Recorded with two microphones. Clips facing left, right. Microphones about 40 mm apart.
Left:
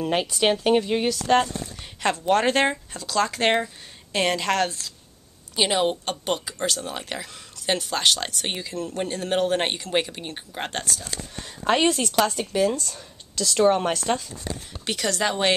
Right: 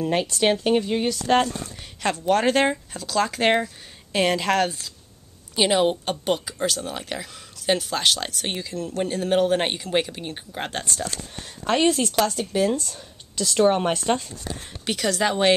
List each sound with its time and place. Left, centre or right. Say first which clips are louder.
0.0 s speech: right 1 dB; centre
1.1 s a woman's voice: right 1 dB; centre
13.6 s speech: even; centre
13.9 s speech: right 2 dB; right
14.9 s speech: right 2 dB; centre